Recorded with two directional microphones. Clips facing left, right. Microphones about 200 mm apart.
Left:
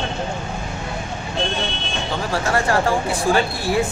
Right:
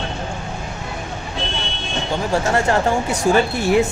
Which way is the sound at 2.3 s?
20° right (ahead or behind).